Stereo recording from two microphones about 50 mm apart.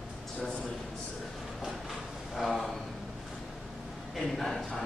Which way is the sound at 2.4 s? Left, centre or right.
Centre.